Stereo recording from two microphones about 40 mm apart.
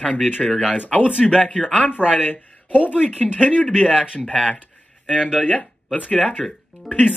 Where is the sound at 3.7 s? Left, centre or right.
Centre.